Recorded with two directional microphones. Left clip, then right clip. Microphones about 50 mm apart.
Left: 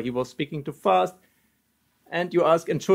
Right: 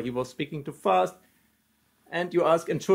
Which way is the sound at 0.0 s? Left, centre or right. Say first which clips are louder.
Left 3 dB; left.